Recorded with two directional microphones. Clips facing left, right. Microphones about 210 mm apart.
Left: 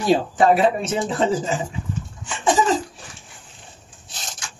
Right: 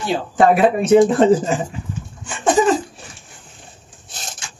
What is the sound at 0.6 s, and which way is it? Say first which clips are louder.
Speech: right 8 dB; 55° right (ahead or behind).